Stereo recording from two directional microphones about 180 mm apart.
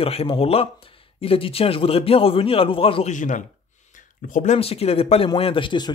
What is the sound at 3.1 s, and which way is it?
A man's voice, 45° left (ahead or behind).